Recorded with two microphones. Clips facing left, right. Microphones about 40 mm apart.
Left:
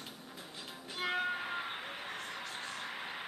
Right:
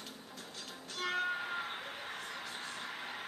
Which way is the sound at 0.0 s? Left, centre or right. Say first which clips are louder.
Even; centre.